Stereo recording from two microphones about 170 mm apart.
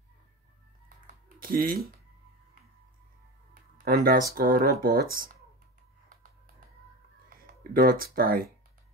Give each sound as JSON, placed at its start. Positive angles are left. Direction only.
{"t": 1.4, "sound": "speech", "side_deg": -60}
{"t": 3.7, "sound": "speech", "side_deg": -55}
{"t": 7.7, "sound": "speech", "side_deg": -55}